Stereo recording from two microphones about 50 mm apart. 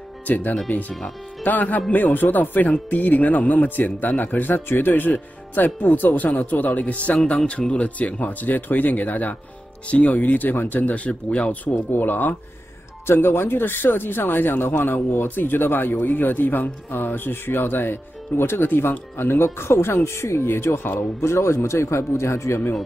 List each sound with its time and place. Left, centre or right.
0.3 s speech: left
11.1 s speech: left
11.9 s speech: left
13.0 s speech: left